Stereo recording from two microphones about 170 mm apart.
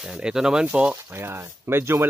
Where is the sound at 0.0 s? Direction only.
5° right (ahead or behind).